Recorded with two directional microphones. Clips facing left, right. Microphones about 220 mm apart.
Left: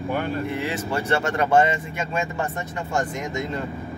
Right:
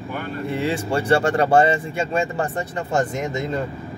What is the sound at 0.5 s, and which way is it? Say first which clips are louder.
Speech: right 4 dB; 30° right (ahead or behind).